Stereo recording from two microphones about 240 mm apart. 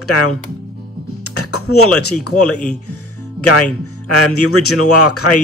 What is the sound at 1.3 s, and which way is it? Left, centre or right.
Speech, left.